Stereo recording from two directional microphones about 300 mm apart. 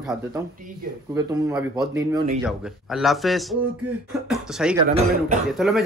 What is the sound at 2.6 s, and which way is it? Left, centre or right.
Speech, centre.